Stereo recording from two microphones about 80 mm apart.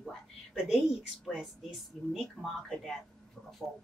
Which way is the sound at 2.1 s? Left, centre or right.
Centre.